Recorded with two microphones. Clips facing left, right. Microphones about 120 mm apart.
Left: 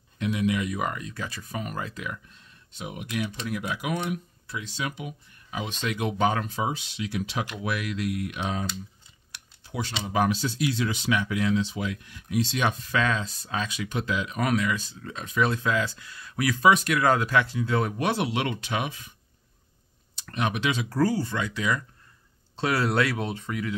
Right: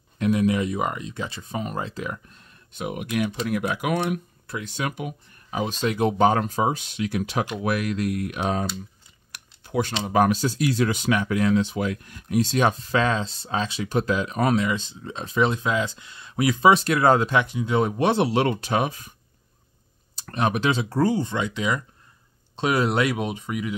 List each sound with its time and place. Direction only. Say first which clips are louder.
0.2 s speech: right 5 dB; 45° right (ahead or behind)
2.3 s speech: right 7 dB; 50° right (ahead or behind)
5.5 s speech: right 6 dB; 40° right (ahead or behind)
20.2 s speech: right 4 dB; 40° right (ahead or behind); by 23.7 s 15° right (ahead or behind)